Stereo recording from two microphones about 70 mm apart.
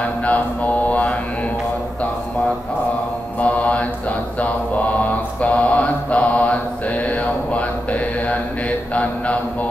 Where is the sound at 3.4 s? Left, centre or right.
Centre.